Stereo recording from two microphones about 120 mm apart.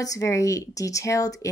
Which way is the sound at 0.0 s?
30° left (ahead or behind).